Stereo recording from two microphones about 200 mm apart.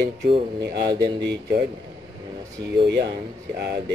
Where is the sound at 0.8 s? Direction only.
20° right (ahead or behind).